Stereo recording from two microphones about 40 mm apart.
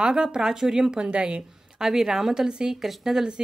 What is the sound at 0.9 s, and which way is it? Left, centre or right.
Speech, right.